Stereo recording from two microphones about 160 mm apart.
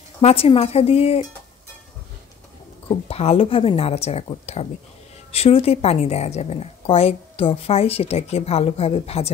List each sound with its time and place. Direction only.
0.2 s speech: 35° left (ahead or behind)
3.1 s speech: 40° left (ahead or behind)